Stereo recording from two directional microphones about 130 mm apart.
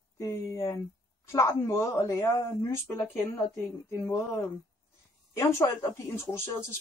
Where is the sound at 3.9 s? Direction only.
20° left (ahead or behind).